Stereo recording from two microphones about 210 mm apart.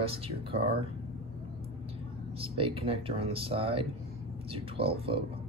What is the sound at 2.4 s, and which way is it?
Speech, 25° right (ahead or behind).